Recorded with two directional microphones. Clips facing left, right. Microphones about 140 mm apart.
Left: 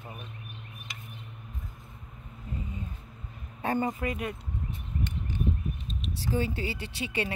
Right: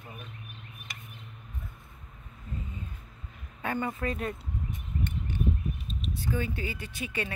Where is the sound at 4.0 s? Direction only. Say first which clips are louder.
Even; 15° left (ahead or behind).